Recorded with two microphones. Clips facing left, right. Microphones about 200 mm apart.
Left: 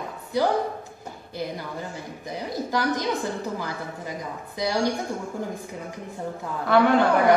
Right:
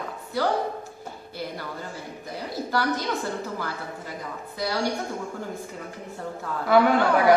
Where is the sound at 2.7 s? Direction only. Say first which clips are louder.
Left 1 dB; 15° left (ahead or behind).